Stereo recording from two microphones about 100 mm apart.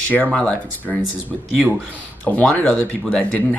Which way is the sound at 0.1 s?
15° left (ahead or behind).